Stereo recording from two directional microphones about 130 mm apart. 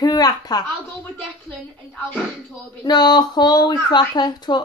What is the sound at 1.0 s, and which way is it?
Speech, 10° left (ahead or behind).